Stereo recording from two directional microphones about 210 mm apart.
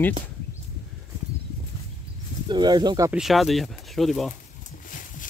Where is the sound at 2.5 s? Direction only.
20° right (ahead or behind).